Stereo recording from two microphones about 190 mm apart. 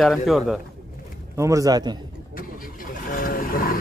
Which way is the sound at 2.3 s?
50° left (ahead or behind).